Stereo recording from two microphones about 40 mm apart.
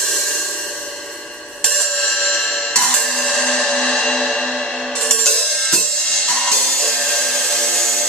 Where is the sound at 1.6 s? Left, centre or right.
Centre.